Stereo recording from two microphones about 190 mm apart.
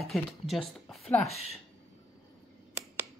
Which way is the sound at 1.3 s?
35° left (ahead or behind).